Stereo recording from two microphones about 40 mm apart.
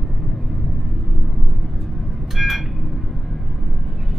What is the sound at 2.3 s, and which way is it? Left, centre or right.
Vehicle, centre.